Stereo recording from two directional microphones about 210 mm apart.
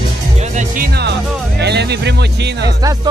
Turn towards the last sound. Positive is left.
turn(degrees=-15)  # may be behind; listen again after turning